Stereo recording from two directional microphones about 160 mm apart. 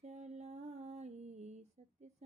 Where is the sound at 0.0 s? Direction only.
45° right (ahead or behind).